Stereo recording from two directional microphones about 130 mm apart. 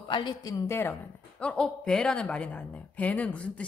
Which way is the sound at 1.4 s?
10° left (ahead or behind).